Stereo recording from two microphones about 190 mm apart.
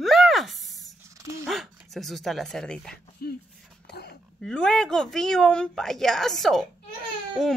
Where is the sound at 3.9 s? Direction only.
60° left (ahead or behind).